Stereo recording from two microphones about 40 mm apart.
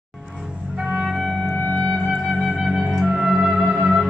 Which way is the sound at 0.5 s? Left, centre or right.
Right.